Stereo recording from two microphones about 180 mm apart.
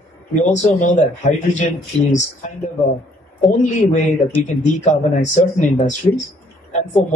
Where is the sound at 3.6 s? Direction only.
40° left (ahead or behind).